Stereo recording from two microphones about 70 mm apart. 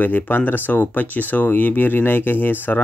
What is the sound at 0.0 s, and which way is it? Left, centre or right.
Speech, left.